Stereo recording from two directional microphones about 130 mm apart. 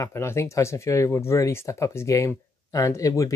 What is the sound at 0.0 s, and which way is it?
Speech, 20° left (ahead or behind).